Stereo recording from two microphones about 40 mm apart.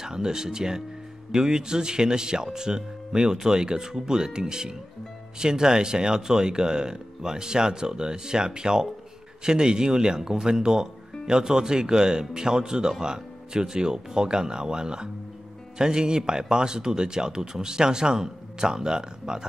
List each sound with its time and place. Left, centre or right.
0.0 s speech: centre